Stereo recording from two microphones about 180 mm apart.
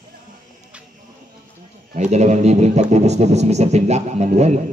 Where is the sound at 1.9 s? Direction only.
40° right (ahead or behind).